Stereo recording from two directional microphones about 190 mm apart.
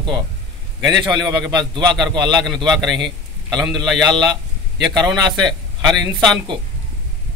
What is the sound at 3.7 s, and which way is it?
Speech, centre (ahead or behind).